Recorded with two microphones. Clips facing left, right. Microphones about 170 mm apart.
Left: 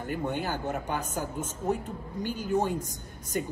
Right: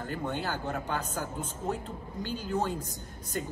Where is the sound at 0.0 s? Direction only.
15° left (ahead or behind).